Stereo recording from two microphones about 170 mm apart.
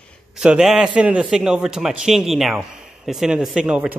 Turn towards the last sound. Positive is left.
turn(degrees=-5)  # may be behind; listen again after turning